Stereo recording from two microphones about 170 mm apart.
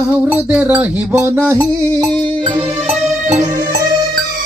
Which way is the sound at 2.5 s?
35° right (ahead or behind).